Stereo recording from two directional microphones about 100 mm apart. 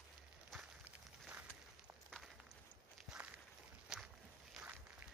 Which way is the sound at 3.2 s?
10° right (ahead or behind).